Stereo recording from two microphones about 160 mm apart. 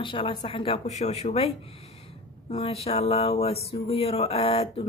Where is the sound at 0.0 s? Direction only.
30° left (ahead or behind).